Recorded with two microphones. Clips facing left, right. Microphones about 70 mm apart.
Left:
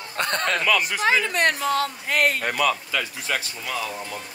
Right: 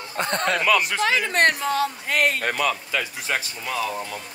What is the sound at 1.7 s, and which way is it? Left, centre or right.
Speech, centre.